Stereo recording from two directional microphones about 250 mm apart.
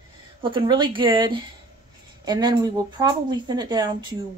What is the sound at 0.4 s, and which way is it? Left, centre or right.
A woman's voice, centre.